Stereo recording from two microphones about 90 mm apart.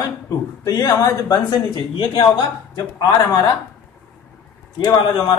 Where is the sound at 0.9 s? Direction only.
35° left (ahead or behind).